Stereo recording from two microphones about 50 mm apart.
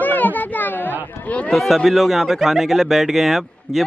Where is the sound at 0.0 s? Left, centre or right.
Left.